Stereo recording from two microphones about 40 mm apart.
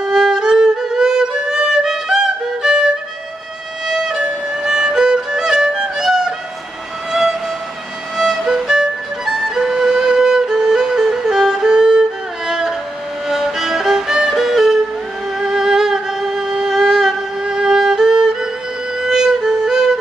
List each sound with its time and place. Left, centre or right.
0.0 s music: centre